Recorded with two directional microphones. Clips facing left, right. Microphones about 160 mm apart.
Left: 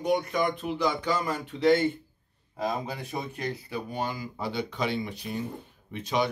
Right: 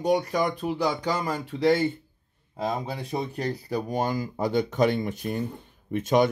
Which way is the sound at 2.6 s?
30° right (ahead or behind).